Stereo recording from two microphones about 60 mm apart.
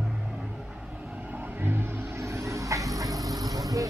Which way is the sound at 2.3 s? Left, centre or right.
Right.